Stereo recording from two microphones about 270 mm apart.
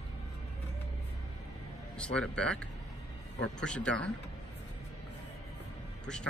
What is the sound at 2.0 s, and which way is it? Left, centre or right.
Speech, centre.